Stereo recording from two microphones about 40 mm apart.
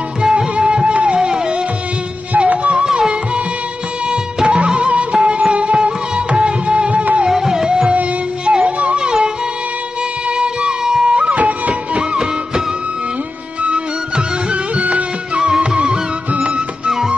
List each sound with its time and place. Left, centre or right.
0.2 s music: right
2.3 s music: right
2.8 s music: centre
7.2 s music: centre
8.6 s music: right
8.9 s music: right
10.8 s a sound: centre
11.1 s music: right
11.4 s music: right
12.0 s music: centre